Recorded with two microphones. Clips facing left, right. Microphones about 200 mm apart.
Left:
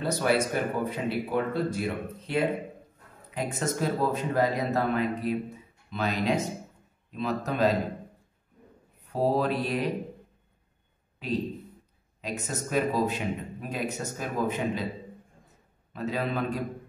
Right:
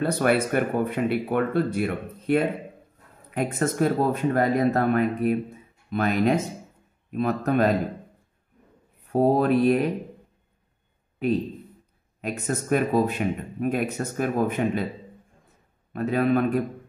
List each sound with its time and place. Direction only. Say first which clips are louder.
0.0 s a man's voice: right 4 dB; 60° right (ahead or behind)
9.0 s mantra: right 5 dB; 50° right (ahead or behind)
12.2 s a man's voice: right 5 dB; 55° right (ahead or behind)
15.9 s a man's voice: right 8 dB; 55° right (ahead or behind)